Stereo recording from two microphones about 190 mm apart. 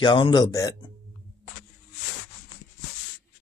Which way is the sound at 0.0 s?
25° left (ahead or behind).